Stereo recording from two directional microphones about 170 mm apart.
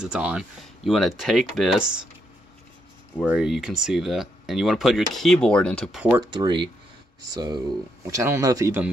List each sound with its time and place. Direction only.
0.0 s speech: 5° right (ahead or behind)
3.2 s speech: 5° right (ahead or behind)
6.3 s speech: 30° right (ahead or behind)